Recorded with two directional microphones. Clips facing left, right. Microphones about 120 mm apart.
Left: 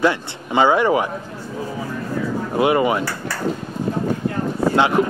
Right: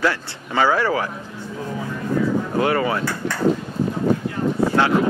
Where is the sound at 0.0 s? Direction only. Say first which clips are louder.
Left 3 dB; 20° left (ahead or behind).